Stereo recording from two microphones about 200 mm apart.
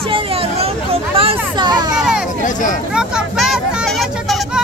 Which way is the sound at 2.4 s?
40° left (ahead or behind).